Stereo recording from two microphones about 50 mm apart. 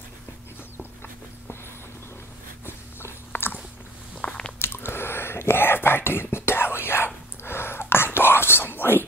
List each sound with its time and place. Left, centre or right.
2.6 s a sound: left
4.2 s biting: centre
4.6 s whispering: left